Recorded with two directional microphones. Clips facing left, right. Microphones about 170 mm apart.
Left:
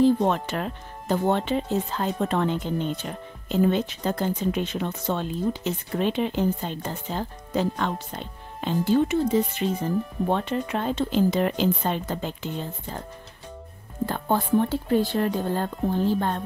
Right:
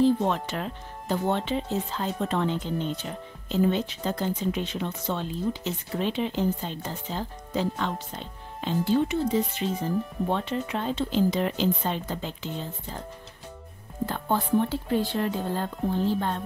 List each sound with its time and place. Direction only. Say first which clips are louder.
0.0 s speech: left 2 dB; 50° left (ahead or behind)
14.0 s speech: left 2 dB; 50° left (ahead or behind)